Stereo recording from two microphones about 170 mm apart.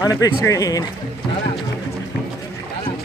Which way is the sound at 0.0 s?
20° left (ahead or behind).